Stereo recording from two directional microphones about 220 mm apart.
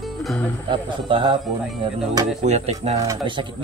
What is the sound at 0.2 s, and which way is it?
Music, centre (ahead or behind).